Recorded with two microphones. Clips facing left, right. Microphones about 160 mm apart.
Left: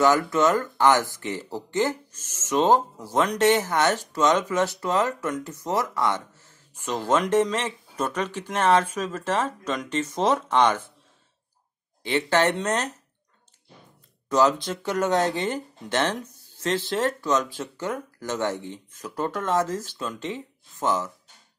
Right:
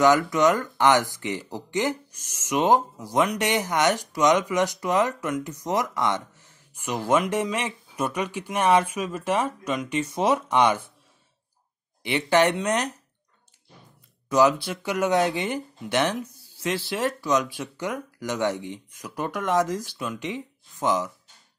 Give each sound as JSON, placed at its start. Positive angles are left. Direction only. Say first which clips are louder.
{"t": 0.0, "sound": "speech", "louder": "right 1 dB", "side_deg": -15}
{"t": 12.0, "sound": "speech", "louder": "right 1 dB", "side_deg": -15}
{"t": 14.3, "sound": "speech", "louder": "right 1 dB", "side_deg": -10}